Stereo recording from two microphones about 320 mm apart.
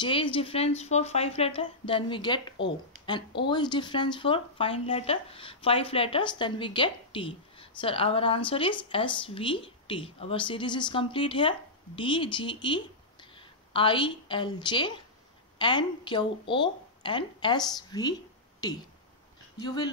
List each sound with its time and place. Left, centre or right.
0.0 s speech: centre